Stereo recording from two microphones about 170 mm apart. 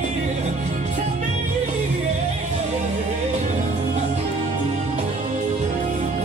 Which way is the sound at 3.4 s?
40° right (ahead or behind).